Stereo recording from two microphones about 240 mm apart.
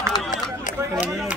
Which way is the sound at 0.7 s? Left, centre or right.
Left.